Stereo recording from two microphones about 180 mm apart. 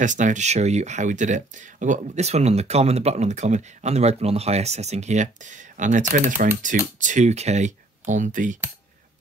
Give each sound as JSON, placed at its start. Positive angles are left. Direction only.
{"t": 0.0, "sound": "speech", "side_deg": -45}